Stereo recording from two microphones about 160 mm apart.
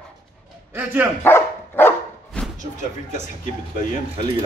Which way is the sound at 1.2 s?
15° left (ahead or behind).